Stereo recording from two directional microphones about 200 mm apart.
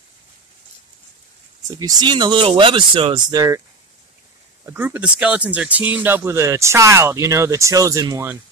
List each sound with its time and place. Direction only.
1.7 s speech: 20° right (ahead or behind)
4.6 s speech: 10° right (ahead or behind)